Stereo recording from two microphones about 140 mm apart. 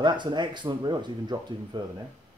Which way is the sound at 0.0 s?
30° right (ahead or behind).